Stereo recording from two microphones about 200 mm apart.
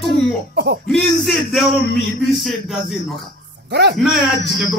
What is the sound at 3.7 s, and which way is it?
Speech, 55° right (ahead or behind).